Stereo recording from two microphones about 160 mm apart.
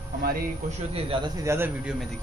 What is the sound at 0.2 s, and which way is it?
Speech, 65° right (ahead or behind).